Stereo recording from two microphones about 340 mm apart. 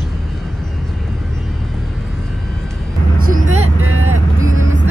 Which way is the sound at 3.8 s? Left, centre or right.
Right.